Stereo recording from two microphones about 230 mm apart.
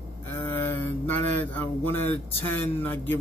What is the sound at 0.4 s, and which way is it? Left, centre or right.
Mantra, centre.